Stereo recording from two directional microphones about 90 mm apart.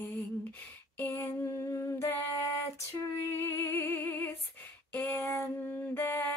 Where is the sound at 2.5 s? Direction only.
35° left (ahead or behind).